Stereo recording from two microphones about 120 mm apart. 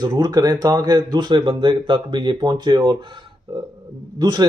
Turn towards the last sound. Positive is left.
turn(degrees=-35)  # may be behind; listen again after turning